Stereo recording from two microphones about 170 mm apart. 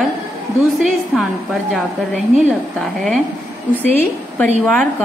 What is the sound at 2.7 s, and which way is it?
Speech, 5° left (ahead or behind).